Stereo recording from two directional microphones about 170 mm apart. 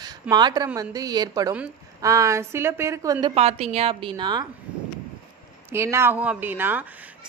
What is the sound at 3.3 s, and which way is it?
A woman's voice, 35° right (ahead or behind).